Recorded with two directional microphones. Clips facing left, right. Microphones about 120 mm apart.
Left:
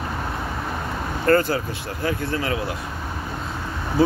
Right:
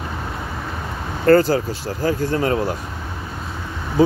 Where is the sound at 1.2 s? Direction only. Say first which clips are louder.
Right 5 dB; 35° right (ahead or behind).